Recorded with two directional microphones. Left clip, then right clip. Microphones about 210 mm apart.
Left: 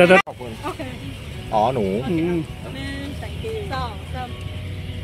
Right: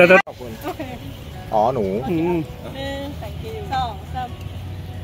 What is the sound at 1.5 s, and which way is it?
Speech, 35° left (ahead or behind).